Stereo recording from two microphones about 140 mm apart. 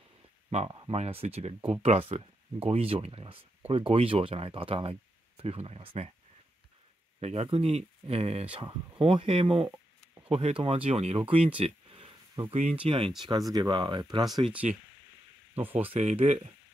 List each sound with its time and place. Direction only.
0.7 s speech: 35° right (ahead or behind)
0.9 s speech: 50° right (ahead or behind)
7.2 s speech: 50° right (ahead or behind); by 14.4 s 30° right (ahead or behind)
14.4 s speech: 10° right (ahead or behind)
16.0 s speech: 55° right (ahead or behind)